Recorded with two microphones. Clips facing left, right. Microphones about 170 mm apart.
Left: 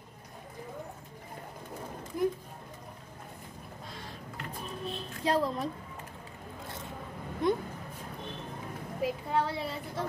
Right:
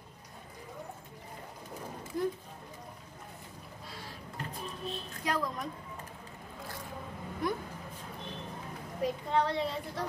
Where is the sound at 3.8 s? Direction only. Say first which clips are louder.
Left 1 dB; 5° right (ahead or behind).